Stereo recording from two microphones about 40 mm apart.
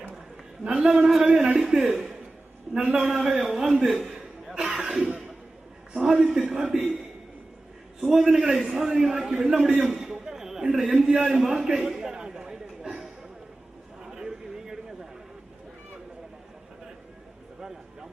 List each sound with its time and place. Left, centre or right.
0.7 s a man's voice: centre
2.7 s a man's voice: centre
3.0 s a man's voice: centre
3.8 s chuckle: centre
4.8 s cough: centre
5.9 s a man's voice: centre
8.0 s a man's voice: centre
12.3 s chatter: centre
14.0 s a sound: centre